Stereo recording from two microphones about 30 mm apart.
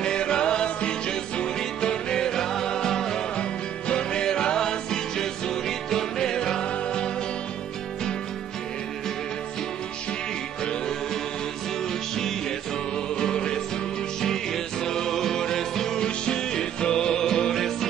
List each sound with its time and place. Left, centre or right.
0.0 s music: left
3.9 s music: left
13.1 s music: left
14.8 s music: centre
16.0 s music: left
17.6 s music: centre